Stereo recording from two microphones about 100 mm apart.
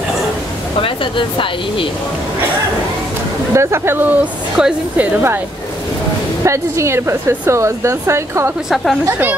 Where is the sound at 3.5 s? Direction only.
25° right (ahead or behind); by 5.2 s 10° right (ahead or behind).